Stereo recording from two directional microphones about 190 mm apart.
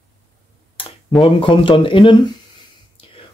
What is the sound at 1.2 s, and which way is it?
Speech, 25° left (ahead or behind).